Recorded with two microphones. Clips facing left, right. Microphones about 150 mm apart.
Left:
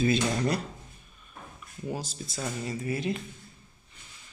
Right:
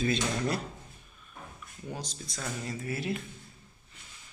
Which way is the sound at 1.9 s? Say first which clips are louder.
Left 4 dB; 5° left (ahead or behind).